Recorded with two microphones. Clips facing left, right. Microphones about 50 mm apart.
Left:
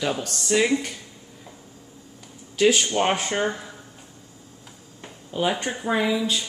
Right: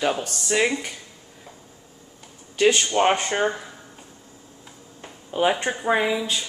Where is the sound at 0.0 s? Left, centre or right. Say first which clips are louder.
Right 2 dB; centre.